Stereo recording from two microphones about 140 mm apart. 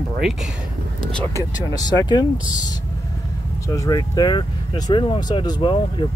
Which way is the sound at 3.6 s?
25° left (ahead or behind).